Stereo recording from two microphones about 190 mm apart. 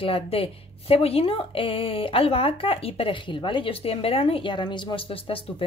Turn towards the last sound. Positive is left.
turn(degrees=30)  # may be behind; listen again after turning